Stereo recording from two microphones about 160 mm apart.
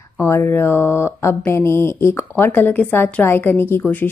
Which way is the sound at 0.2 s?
15° left (ahead or behind).